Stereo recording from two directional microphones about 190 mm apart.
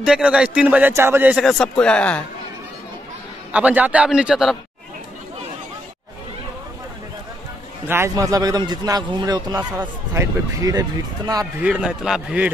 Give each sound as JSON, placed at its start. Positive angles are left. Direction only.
{"t": 0.0, "sound": "a man's voice", "side_deg": -5}
{"t": 1.4, "sound": "speech", "side_deg": 0}
{"t": 3.5, "sound": "a man's voice", "side_deg": -5}
{"t": 7.9, "sound": "a man's voice", "side_deg": -15}
{"t": 11.6, "sound": "a man's voice", "side_deg": -5}